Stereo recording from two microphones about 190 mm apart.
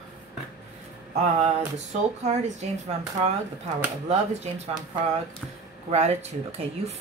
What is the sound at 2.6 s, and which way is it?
Speech, 35° right (ahead or behind).